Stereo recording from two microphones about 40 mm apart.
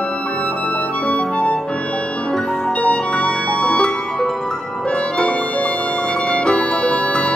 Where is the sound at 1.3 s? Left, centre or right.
Left.